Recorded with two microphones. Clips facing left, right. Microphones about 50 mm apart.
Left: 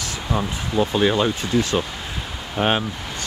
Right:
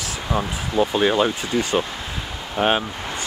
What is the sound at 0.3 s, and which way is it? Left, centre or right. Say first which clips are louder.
Speech: even; centre.